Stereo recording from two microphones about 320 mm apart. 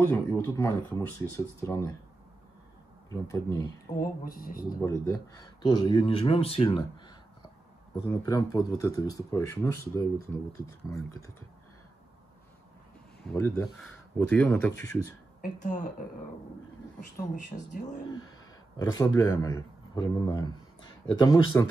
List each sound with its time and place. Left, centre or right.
0.1 s speech: centre
3.1 s speech: centre
3.9 s speech: left
4.7 s speech: centre
13.2 s speech: centre
15.4 s speech: left
17.6 s speech: left
18.8 s speech: centre